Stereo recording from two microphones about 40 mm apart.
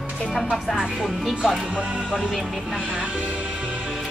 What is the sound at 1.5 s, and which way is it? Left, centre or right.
Speech, right.